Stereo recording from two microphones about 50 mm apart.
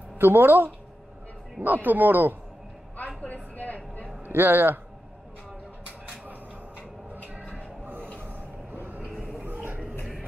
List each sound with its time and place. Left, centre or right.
0.2 s speech: right
3.5 s vehicle: left
4.3 s speech: right
8.7 s vehicle: right
9.2 s a sound: right